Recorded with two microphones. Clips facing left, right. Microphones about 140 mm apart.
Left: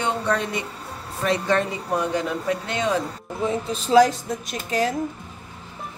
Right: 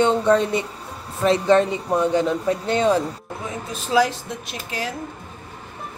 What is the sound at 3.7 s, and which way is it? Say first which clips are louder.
Speech: left 3 dB; 35° left (ahead or behind).